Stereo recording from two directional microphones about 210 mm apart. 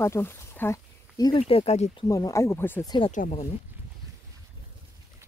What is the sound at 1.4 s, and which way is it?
Speech, 30° left (ahead or behind).